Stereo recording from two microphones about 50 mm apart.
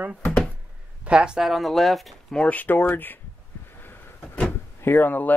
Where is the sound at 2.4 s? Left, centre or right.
Left.